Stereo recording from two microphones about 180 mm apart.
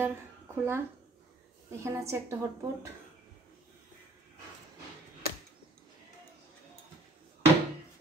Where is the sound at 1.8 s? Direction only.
15° right (ahead or behind).